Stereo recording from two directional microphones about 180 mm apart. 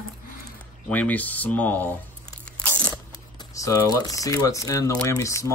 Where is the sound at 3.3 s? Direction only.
20° left (ahead or behind).